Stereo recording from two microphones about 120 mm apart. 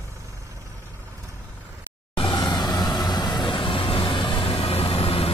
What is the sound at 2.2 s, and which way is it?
Vehicle, 40° left (ahead or behind).